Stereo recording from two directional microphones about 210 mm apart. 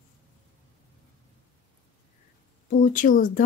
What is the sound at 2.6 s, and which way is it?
Speech, 40° left (ahead or behind).